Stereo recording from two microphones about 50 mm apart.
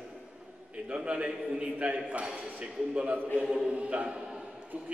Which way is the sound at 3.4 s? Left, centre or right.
Centre.